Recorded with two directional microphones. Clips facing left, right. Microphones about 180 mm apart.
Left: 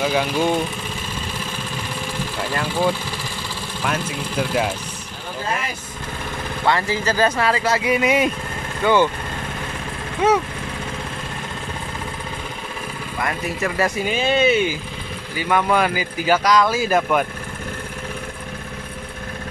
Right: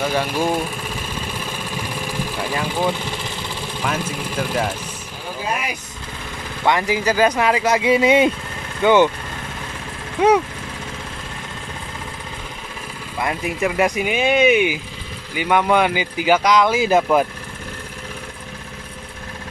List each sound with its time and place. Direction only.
0.0 s speech: centre (ahead or behind)
2.3 s speech: 15° right (ahead or behind)
5.4 s speech: 15° right (ahead or behind)
10.2 s speech: 10° right (ahead or behind)
13.2 s speech: 15° right (ahead or behind)